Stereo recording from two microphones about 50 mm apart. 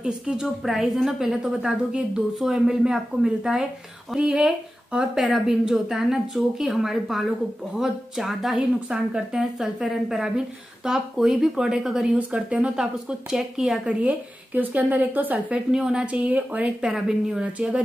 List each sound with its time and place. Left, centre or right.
0.0 s a woman's voice: centre
12.4 s speech: right
12.7 s a woman's voice: centre
13.8 s a woman's voice: right
15.7 s a woman's voice: centre
16.1 s speech: right
16.8 s a woman's voice: centre